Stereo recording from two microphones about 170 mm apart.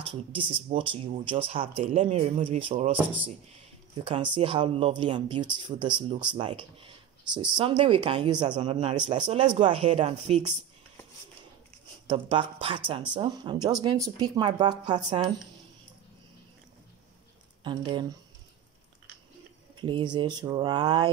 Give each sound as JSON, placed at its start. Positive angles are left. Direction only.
{"t": 0.0, "sound": "speech", "side_deg": -30}
{"t": 4.0, "sound": "speech", "side_deg": -30}
{"t": 12.1, "sound": "speech", "side_deg": -30}
{"t": 17.6, "sound": "speech", "side_deg": -25}
{"t": 19.7, "sound": "a sound", "side_deg": -30}
{"t": 20.2, "sound": "speech", "side_deg": -25}